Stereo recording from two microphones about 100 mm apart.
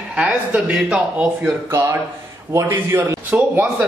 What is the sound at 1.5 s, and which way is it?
A man's voice, 30° right (ahead or behind).